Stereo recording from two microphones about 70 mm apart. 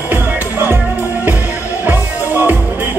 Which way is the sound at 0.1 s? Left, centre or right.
Right.